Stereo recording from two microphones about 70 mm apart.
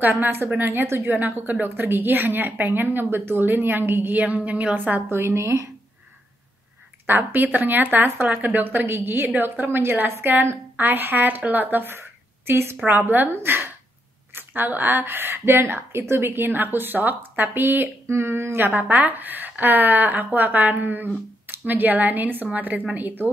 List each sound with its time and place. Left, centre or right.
0.2 s a woman's voice: right
5.1 s a woman's voice: right
7.1 s a woman's voice: right
12.8 s a woman's voice: right
13.3 s a woman's voice: right
14.3 s a woman's voice: right
18.7 s a woman's voice: right